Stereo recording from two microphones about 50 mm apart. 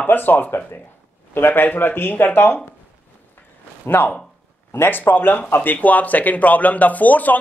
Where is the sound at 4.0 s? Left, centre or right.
Left.